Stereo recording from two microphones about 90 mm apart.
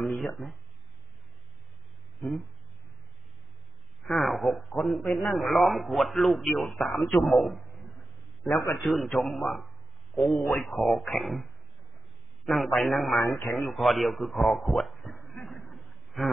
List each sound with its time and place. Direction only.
0.0 s speech: centre (ahead or behind)
2.1 s speech: centre (ahead or behind)
4.0 s a man's voice: centre (ahead or behind)
7.7 s a sound: centre (ahead or behind)
8.5 s a man's voice: 30° left (ahead or behind)
8.7 s a man's voice: centre (ahead or behind)
12.4 s a man's voice: centre (ahead or behind)
15.3 s a sound: centre (ahead or behind)